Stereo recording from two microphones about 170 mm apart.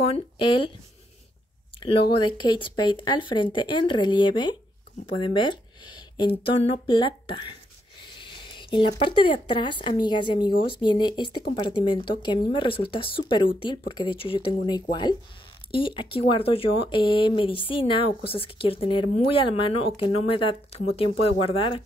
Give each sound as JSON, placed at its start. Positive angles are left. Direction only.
{"t": 0.0, "sound": "speech", "side_deg": 30}
{"t": 1.8, "sound": "speech", "side_deg": 30}
{"t": 8.0, "sound": "a sound", "side_deg": 30}
{"t": 9.0, "sound": "speech", "side_deg": 30}